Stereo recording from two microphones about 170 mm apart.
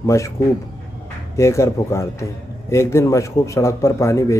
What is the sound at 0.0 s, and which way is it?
Speech, 15° left (ahead or behind).